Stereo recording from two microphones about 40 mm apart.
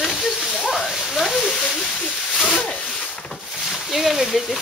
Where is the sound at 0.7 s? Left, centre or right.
Centre.